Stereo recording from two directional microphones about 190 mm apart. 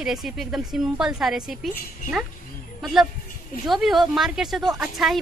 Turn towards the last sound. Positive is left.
turn(degrees=0)  # may be behind; listen again after turning